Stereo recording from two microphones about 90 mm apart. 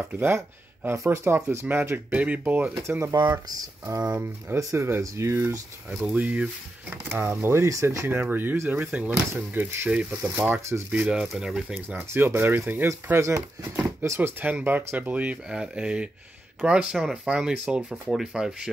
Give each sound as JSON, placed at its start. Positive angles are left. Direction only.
{"t": 0.9, "sound": "speech", "side_deg": -30}
{"t": 2.7, "sound": "speech", "side_deg": -30}
{"t": 3.2, "sound": "speech", "side_deg": -55}
{"t": 4.0, "sound": "speech", "side_deg": -15}
{"t": 4.6, "sound": "speech", "side_deg": -35}
{"t": 5.9, "sound": "speech", "side_deg": -10}
{"t": 7.1, "sound": "speech", "side_deg": -25}
{"t": 11.0, "sound": "speech", "side_deg": -5}
{"t": 12.1, "sound": "speech", "side_deg": -30}
{"t": 14.4, "sound": "speech", "side_deg": -20}